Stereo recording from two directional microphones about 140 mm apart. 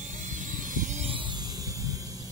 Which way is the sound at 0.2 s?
65° right (ahead or behind).